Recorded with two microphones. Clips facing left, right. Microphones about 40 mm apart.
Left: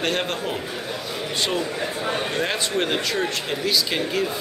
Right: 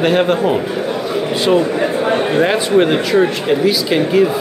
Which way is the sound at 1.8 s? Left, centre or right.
Right.